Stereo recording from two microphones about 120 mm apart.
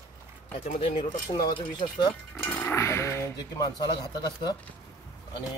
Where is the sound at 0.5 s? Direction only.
90° left.